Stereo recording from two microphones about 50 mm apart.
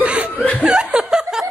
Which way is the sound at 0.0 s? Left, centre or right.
Right.